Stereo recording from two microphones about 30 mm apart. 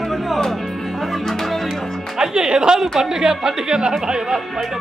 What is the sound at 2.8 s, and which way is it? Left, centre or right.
A woman's voice, centre.